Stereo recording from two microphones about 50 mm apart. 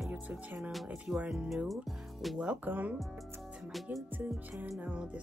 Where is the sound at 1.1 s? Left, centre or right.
Centre.